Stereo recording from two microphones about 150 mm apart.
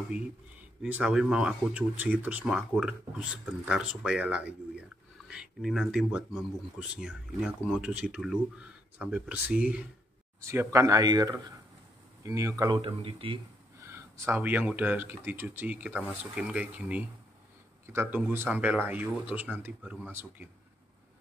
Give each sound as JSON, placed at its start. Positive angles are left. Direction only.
{"t": 0.8, "sound": "speech", "side_deg": -5}
{"t": 10.4, "sound": "speech", "side_deg": -20}
{"t": 12.8, "sound": "speech", "side_deg": -35}
{"t": 13.8, "sound": "speech", "side_deg": -15}